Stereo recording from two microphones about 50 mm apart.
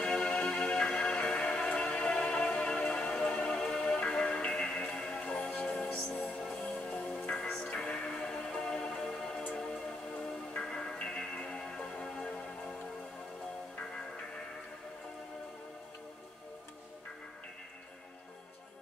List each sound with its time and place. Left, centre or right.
0.0 s music: centre
13.7 s music: left